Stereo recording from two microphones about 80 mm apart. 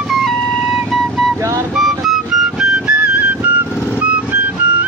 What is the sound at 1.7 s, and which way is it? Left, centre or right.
Music, centre.